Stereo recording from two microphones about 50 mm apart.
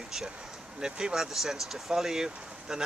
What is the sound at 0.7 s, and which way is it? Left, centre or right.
Speech, centre.